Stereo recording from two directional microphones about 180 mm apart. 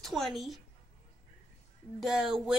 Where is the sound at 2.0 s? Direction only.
5° right (ahead or behind).